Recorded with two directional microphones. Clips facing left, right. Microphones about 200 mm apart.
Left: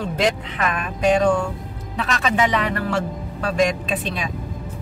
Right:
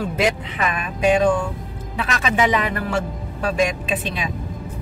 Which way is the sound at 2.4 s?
5° right (ahead or behind).